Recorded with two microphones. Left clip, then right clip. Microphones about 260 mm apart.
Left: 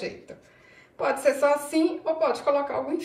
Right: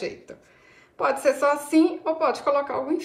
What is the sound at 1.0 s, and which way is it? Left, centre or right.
A woman's voice, right.